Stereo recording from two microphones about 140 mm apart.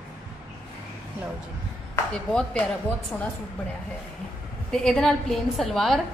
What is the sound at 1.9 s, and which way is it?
Speech, 5° left (ahead or behind).